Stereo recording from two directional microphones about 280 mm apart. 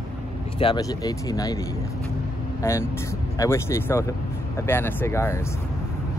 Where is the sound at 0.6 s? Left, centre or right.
Centre.